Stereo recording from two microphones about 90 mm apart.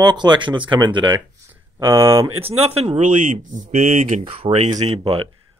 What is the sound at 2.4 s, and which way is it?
Speech, 90° right.